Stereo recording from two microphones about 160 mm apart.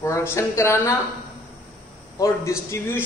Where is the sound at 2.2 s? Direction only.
15° left (ahead or behind).